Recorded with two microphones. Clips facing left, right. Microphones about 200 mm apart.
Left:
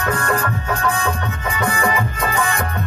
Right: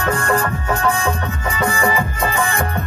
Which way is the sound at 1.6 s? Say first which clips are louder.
Right 1 dB; 25° right (ahead or behind).